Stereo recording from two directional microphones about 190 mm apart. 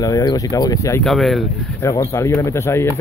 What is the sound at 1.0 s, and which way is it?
Speech, centre (ahead or behind).